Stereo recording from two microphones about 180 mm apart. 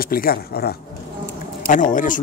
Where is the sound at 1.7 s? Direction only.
45° left (ahead or behind).